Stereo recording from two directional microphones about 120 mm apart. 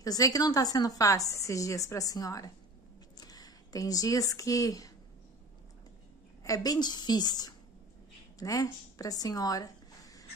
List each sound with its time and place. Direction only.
0.0 s a woman's voice: 30° left (ahead or behind)
6.4 s a woman's voice: 30° left (ahead or behind)